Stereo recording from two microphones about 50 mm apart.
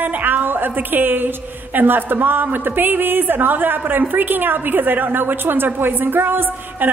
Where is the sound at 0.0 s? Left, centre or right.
Right.